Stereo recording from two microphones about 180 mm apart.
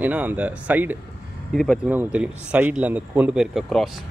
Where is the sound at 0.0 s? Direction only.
10° right (ahead or behind).